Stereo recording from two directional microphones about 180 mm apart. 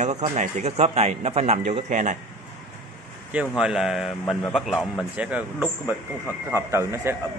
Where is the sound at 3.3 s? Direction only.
5° right (ahead or behind).